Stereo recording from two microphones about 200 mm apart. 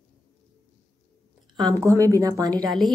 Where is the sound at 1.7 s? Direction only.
15° right (ahead or behind).